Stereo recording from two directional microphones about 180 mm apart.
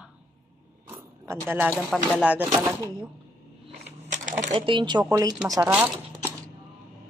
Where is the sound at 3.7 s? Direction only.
45° right (ahead or behind).